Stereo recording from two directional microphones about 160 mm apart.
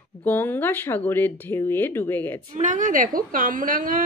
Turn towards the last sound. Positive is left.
turn(degrees=-55)  # may be behind; listen again after turning